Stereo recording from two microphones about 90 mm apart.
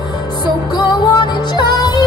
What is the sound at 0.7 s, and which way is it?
Music, 50° left (ahead or behind).